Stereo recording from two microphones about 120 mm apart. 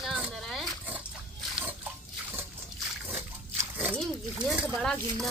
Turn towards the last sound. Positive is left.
turn(degrees=5)  # may be behind; listen again after turning